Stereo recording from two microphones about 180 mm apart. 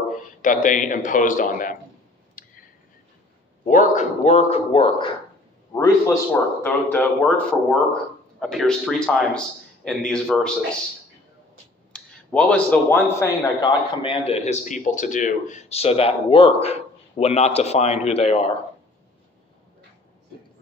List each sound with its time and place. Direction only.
0.1 s a man's voice: 50° left (ahead or behind)
2.4 s a sound: 50° left (ahead or behind)
3.6 s a man's voice: 40° left (ahead or behind)
5.7 s a man's voice: 20° left (ahead or behind)
11.9 s a man's voice: 5° left (ahead or behind); by 18.5 s 35° left (ahead or behind)